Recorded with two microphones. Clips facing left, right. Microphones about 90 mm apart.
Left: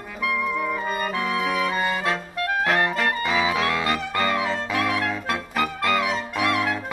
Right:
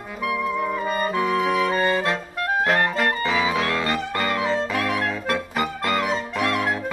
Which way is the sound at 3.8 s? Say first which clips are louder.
Even; 35° right (ahead or behind).